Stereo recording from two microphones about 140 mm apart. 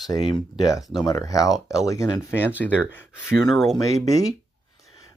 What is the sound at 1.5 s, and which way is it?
Speech, centre (ahead or behind).